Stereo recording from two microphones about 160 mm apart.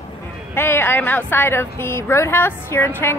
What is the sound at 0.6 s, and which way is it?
A woman's voice, 15° left (ahead or behind).